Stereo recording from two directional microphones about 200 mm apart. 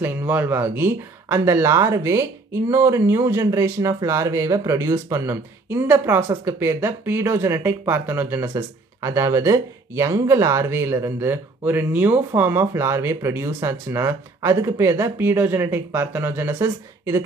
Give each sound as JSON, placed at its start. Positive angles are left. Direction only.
{"t": 0.0, "sound": "speech", "side_deg": -10}